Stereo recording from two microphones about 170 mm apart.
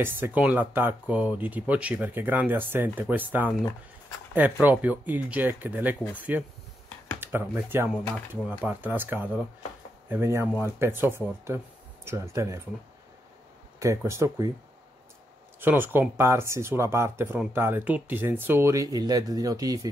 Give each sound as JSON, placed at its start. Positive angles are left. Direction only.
{"t": 0.0, "sound": "speech", "side_deg": -10}
{"t": 13.7, "sound": "speech", "side_deg": -15}
{"t": 15.6, "sound": "speech", "side_deg": -10}